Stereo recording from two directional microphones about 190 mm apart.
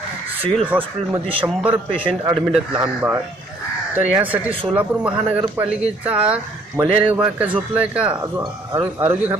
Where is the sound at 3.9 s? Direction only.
10° right (ahead or behind).